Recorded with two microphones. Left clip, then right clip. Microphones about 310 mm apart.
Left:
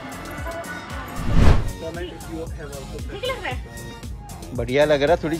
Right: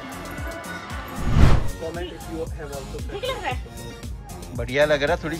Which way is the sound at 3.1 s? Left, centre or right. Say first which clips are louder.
Even; centre.